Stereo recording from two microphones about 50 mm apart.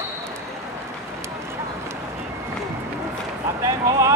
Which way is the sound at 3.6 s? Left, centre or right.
Right.